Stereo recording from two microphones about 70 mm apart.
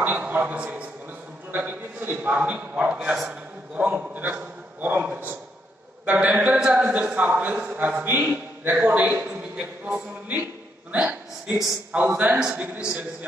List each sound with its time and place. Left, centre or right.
0.1 s a man's voice: right
8.2 s a man's voice: centre
11.4 s a man's voice: centre
12.0 s a man's voice: right